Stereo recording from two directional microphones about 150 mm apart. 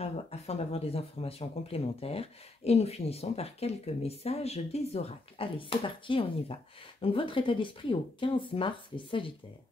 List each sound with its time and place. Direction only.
0.0 s speech: 45° left (ahead or behind)